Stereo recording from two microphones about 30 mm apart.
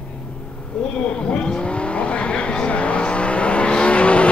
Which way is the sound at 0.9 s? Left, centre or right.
Left.